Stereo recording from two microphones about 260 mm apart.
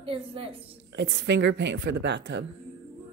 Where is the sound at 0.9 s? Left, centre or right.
Right.